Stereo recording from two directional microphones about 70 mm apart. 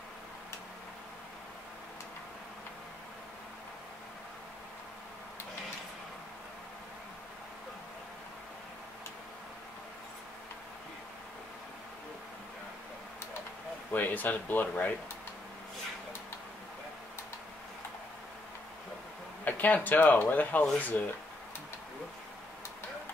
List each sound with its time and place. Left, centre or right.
13.9 s speech: left
19.4 s speech: left